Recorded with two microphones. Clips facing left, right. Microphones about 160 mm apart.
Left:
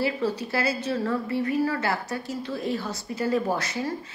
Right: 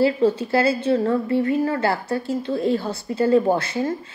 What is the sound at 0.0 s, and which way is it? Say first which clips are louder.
A woman's voice: right 8 dB; 25° right (ahead or behind).